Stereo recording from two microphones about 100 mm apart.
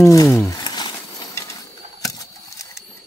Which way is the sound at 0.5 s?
45° left (ahead or behind).